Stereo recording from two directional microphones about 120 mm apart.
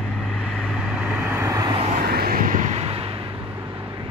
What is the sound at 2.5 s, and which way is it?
Vehicle, 80° right.